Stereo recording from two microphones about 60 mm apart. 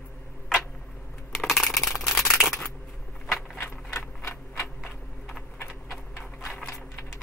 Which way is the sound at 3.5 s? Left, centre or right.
Left.